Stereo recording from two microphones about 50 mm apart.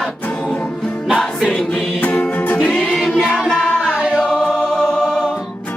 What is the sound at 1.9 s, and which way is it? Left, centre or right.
Music, left.